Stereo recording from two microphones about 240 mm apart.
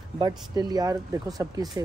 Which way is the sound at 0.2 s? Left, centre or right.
Centre.